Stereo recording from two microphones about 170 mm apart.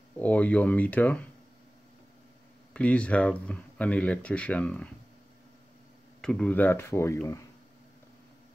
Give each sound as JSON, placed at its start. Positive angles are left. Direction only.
{"t": 0.2, "sound": "speech", "side_deg": 10}
{"t": 2.7, "sound": "speech", "side_deg": 5}
{"t": 6.2, "sound": "speech", "side_deg": 5}